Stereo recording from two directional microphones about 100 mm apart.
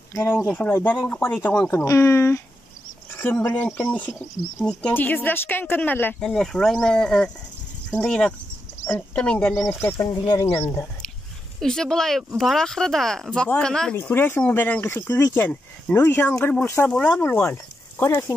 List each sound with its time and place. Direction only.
0.1 s speech: 30° left (ahead or behind); by 1.7 s 15° left (ahead or behind)
1.7 s speech: 30° left (ahead or behind)
3.1 s a sound: 20° left (ahead or behind)
3.5 s speech: 15° left (ahead or behind)
6.1 s speech: 5° left (ahead or behind)
9.7 s speech: 25° left (ahead or behind)
11.6 s speech: 5° left (ahead or behind)
13.9 s speech: 20° left (ahead or behind)